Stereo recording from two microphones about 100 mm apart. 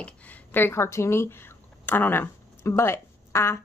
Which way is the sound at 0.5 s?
25° left (ahead or behind).